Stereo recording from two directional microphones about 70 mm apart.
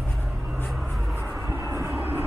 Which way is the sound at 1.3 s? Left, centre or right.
Right.